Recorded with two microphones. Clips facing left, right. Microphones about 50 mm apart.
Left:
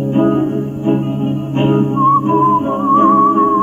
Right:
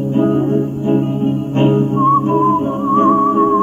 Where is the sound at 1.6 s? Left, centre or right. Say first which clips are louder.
Even; left.